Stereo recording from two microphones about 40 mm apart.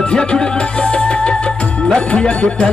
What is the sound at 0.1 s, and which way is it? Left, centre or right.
Music, left.